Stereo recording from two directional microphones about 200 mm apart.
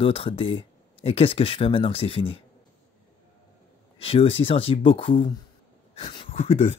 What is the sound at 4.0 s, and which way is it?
Speech, 30° left (ahead or behind).